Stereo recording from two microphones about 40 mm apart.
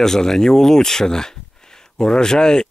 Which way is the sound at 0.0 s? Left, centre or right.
Centre.